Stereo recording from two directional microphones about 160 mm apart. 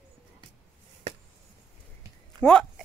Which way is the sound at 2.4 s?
5° left (ahead or behind).